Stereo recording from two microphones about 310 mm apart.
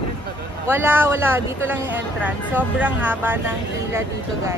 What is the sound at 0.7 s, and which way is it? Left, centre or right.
Speech, centre.